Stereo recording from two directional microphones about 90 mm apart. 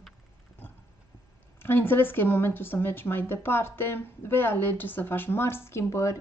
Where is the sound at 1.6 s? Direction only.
25° left (ahead or behind).